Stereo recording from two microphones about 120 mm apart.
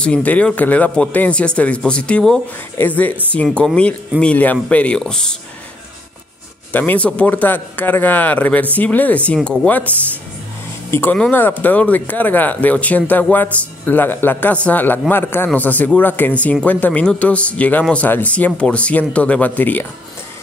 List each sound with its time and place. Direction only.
0.0 s speech: 10° left (ahead or behind)
6.7 s speech: 15° left (ahead or behind)